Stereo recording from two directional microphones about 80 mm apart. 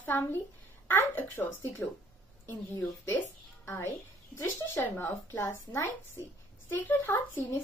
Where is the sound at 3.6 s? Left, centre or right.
Left.